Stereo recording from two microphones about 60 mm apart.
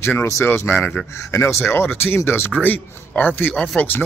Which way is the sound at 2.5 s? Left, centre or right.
Left.